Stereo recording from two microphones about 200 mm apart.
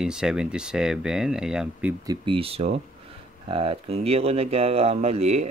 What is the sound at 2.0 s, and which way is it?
Speech, 20° right (ahead or behind).